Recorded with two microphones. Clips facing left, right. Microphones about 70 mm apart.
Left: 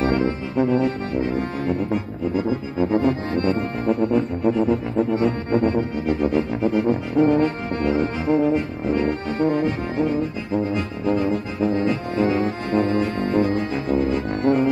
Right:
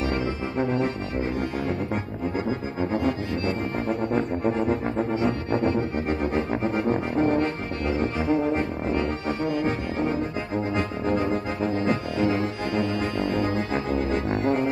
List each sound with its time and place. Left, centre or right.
0.0 s brass instrument: left
0.6 s music: right
2.9 s music: left
4.0 s music: right
5.1 s music: left
6.0 s music: right
7.8 s music: left
8.4 s brass instrument: right
9.0 s brass instrument: left
9.7 s music: right
11.1 s brass instrument: right
11.7 s brass instrument: right
12.2 s brass instrument: left
14.4 s music: left